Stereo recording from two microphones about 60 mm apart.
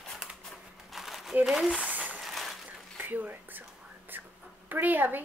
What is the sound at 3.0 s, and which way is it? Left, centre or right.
Speech, right.